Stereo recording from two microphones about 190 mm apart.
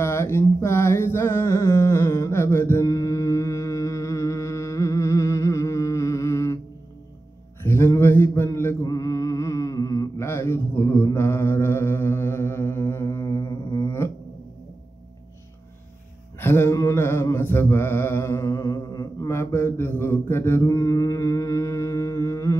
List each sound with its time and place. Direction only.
0.0 s mantra: 15° left (ahead or behind)
7.6 s mantra: 15° left (ahead or behind)
16.3 s mantra: 10° left (ahead or behind)